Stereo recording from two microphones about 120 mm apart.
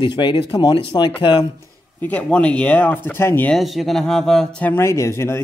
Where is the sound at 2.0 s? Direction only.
10° left (ahead or behind).